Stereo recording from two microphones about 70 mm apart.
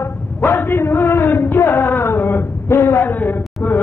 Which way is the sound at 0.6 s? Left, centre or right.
Left.